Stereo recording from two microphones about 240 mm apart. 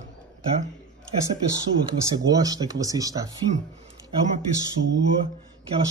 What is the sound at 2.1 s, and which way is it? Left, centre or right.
Speech, centre.